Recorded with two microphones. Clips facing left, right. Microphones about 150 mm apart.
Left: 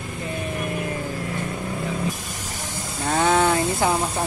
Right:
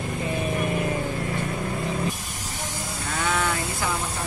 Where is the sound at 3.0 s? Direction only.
35° left (ahead or behind).